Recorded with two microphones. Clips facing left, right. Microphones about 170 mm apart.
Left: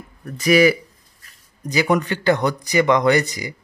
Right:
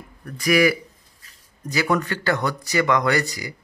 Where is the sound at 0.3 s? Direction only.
25° left (ahead or behind).